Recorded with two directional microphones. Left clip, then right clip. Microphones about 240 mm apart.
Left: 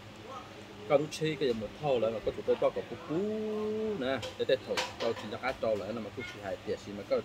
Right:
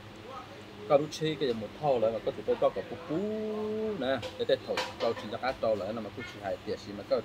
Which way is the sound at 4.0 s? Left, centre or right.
Centre.